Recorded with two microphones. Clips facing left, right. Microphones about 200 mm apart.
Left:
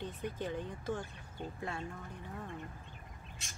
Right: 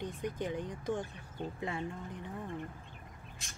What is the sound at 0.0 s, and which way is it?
Speech, 15° right (ahead or behind).